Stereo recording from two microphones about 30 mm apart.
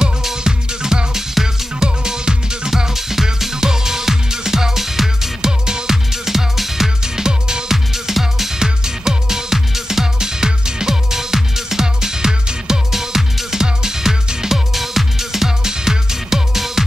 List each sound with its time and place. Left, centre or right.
0.4 s music: right
2.9 s music: centre
7.7 s music: centre
12.9 s music: centre